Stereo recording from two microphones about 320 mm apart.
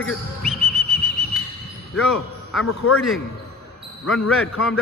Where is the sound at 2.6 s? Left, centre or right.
Left.